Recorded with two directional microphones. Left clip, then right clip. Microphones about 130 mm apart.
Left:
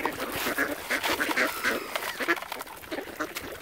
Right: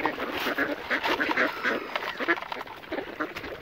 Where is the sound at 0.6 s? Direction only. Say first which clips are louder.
Right 1 dB; 25° left (ahead or behind).